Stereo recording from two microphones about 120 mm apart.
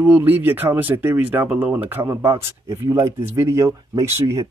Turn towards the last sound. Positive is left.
turn(degrees=-25)  # may be behind; listen again after turning